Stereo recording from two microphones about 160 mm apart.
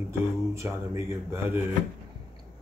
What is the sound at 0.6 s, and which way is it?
Speech, 15° right (ahead or behind).